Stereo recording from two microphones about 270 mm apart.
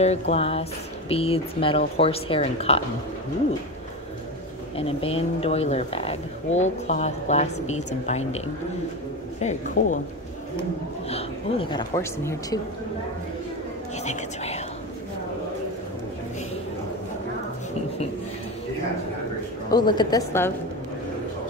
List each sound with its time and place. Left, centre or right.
0.0 s speech: left
4.7 s speech: left
9.4 s speech: left
11.1 s speech: left
14.0 s speech: left
19.7 s speech: centre